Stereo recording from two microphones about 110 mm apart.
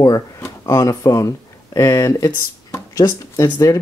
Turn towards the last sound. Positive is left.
turn(degrees=30)  # may be behind; listen again after turning